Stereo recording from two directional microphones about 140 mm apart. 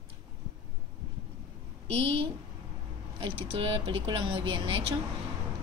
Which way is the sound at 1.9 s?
50° right (ahead or behind).